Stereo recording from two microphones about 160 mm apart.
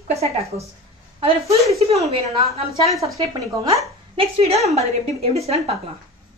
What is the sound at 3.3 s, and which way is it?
Speech, 20° right (ahead or behind).